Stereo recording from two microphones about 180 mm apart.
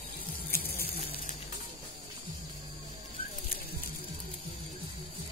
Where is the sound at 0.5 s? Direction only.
55° left (ahead or behind).